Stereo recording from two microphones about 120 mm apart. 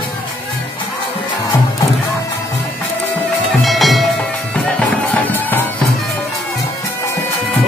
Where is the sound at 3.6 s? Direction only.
Centre (ahead or behind).